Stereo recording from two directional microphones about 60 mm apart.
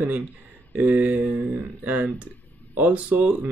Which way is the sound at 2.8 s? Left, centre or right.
Right.